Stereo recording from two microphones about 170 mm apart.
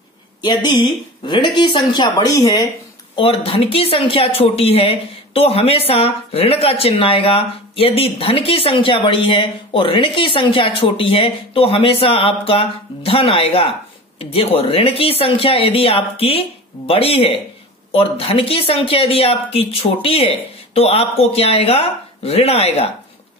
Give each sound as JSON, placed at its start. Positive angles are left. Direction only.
{"t": 0.4, "sound": "speech", "side_deg": 25}
{"t": 3.2, "sound": "speech", "side_deg": 35}